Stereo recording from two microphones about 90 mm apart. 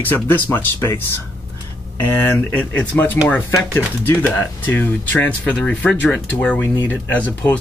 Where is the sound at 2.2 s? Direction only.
20° left (ahead or behind).